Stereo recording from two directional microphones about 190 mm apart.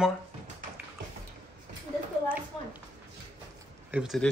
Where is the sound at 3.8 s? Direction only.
5° right (ahead or behind).